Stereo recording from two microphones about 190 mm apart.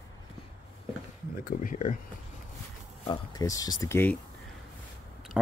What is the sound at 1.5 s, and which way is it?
Speech, 45° left (ahead or behind).